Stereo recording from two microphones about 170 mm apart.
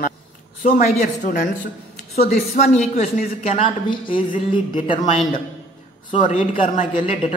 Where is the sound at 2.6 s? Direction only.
45° left (ahead or behind).